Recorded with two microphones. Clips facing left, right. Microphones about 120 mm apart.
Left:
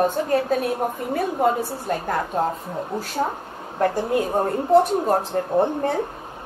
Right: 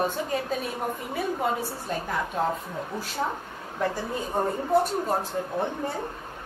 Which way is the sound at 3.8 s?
65° left (ahead or behind).